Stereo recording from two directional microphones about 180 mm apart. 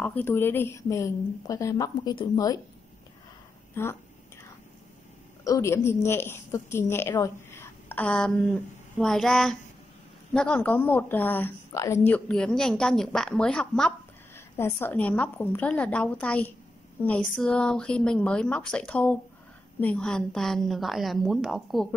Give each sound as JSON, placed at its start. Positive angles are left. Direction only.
{"t": 0.0, "sound": "a woman's voice", "side_deg": 10}
{"t": 3.8, "sound": "a woman's voice", "side_deg": 10}
{"t": 5.4, "sound": "a woman's voice", "side_deg": 15}